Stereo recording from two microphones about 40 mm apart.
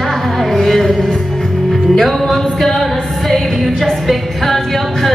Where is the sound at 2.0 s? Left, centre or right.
Centre.